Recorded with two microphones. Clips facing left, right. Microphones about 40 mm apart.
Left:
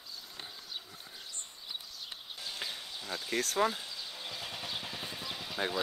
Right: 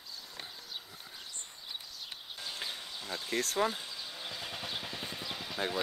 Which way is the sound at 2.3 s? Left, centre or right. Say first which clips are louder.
Right 1 dB; centre.